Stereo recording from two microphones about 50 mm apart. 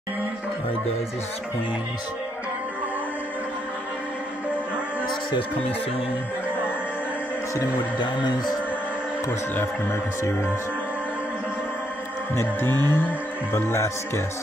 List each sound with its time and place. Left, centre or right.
12.4 s music: left
13.5 s speech: left